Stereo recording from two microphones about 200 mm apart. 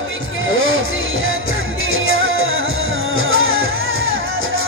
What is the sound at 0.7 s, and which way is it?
Music, 85° right.